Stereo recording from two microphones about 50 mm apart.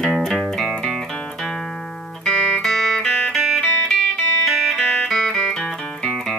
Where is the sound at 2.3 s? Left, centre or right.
Centre.